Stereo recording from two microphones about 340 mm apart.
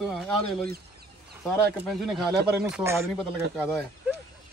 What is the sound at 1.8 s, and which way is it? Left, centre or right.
A man's voice, centre.